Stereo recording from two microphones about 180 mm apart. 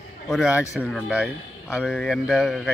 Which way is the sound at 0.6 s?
Centre (ahead or behind).